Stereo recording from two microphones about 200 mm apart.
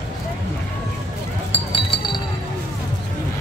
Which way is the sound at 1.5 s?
25° left (ahead or behind).